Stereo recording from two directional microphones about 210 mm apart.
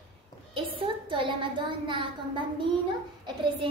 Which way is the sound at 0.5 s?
25° right (ahead or behind).